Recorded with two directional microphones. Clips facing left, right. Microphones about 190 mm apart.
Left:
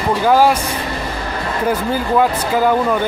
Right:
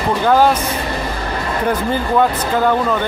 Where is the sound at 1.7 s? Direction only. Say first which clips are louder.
Even; 5° left (ahead or behind).